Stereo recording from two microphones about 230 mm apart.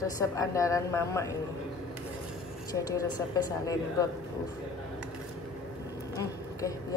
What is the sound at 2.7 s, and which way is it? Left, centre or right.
Speech, centre.